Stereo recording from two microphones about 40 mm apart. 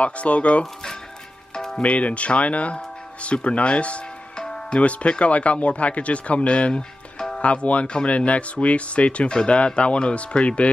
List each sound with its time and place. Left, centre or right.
0.0 s speech: left
1.5 s music: centre
1.8 s speech: left